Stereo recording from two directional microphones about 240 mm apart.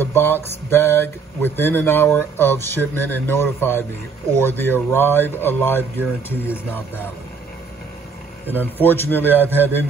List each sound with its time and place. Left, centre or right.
0.0 s speech: centre
8.5 s speech: centre